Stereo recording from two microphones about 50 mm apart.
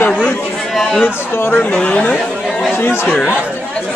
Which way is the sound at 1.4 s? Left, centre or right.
Left.